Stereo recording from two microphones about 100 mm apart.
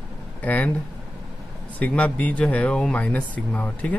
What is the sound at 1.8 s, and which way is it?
A man's voice, 15° left (ahead or behind).